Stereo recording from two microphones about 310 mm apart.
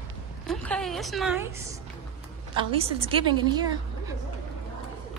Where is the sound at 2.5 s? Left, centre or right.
Centre.